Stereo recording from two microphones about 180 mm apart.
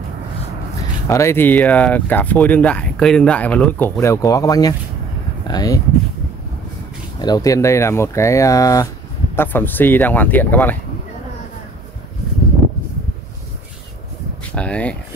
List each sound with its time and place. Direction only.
1.0 s speech: 15° left (ahead or behind)
7.2 s speech: 20° left (ahead or behind)
14.5 s speech: 5° left (ahead or behind)